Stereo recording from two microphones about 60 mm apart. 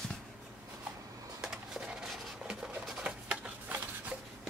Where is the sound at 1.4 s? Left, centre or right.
Centre.